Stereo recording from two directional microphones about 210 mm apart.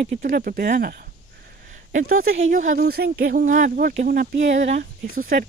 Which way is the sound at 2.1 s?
70° right (ahead or behind).